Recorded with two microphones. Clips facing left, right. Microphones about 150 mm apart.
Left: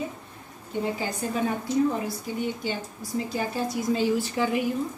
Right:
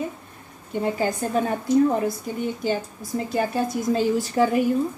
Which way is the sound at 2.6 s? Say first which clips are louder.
Right 6 dB; 45° right (ahead or behind).